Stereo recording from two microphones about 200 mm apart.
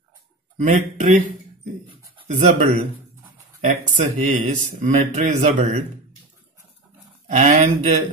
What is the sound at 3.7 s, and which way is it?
Mantra, 35° right (ahead or behind).